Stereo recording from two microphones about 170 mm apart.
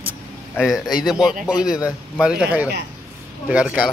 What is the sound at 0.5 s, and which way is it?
A man's voice, centre (ahead or behind).